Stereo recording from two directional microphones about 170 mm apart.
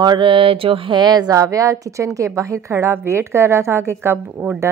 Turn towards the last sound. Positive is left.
turn(degrees=-10)  # may be behind; listen again after turning